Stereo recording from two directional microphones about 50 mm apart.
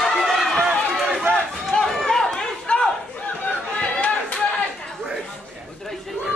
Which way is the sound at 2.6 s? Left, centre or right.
Centre.